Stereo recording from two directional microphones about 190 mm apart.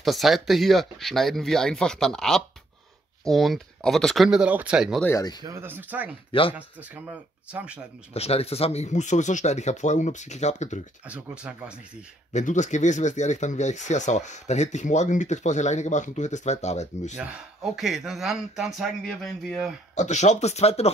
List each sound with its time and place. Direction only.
0.0 s speech: centre (ahead or behind)
5.0 s speech: 20° left (ahead or behind)
5.4 s speech: 15° right (ahead or behind)
8.1 s speech: 30° left (ahead or behind)
11.1 s speech: 5° right (ahead or behind)
12.3 s speech: 40° left (ahead or behind)
17.2 s speech: 5° right (ahead or behind)
20.0 s speech: 40° left (ahead or behind)